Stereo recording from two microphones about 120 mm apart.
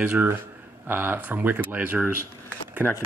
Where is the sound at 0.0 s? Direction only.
15° right (ahead or behind).